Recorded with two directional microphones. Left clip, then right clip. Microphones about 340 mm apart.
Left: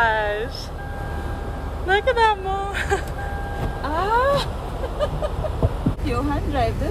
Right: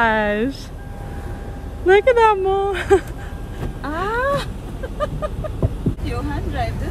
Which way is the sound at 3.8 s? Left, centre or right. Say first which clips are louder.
Left 1 dB; centre.